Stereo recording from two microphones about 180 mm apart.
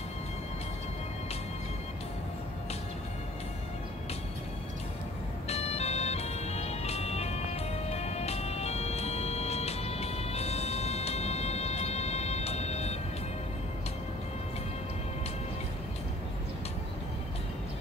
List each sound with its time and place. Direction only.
5.5 s music: 35° left (ahead or behind)